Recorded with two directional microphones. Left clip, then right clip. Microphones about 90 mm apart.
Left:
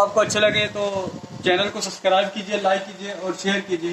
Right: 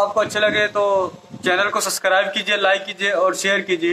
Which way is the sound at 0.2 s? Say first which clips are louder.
Right 1 dB; 35° right (ahead or behind).